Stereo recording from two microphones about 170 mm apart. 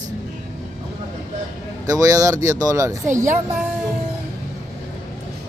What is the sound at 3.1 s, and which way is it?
Speech, 45° right (ahead or behind).